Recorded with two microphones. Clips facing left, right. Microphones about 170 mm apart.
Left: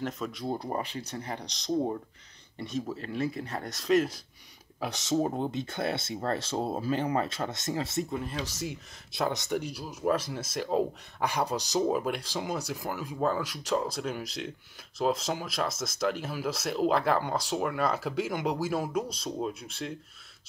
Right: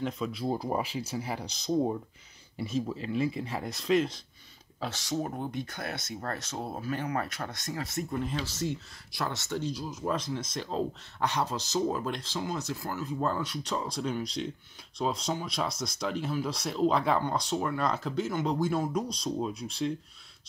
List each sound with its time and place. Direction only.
0.0 s speech: centre (ahead or behind)
4.7 s speech: 15° left (ahead or behind)
5.1 s speech: 30° left (ahead or behind)
8.5 s speech: 10° left (ahead or behind)